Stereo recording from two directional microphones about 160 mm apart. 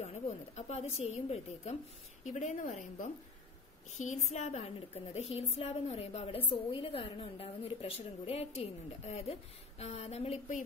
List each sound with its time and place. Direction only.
0.0 s a woman's voice: 40° left (ahead or behind)